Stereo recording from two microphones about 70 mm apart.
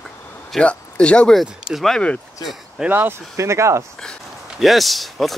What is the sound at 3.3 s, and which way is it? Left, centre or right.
Speech, right.